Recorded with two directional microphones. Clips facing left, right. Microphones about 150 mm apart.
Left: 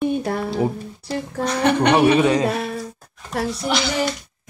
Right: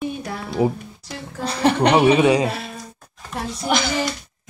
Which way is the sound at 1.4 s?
30° right (ahead or behind).